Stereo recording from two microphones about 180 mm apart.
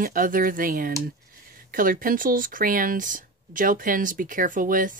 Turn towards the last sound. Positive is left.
turn(degrees=-50)  # may be behind; listen again after turning